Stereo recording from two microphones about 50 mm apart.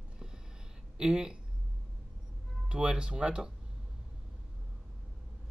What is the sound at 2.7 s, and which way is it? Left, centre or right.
Speech, centre.